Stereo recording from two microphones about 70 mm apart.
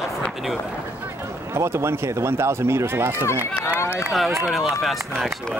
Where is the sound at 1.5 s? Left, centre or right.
Right.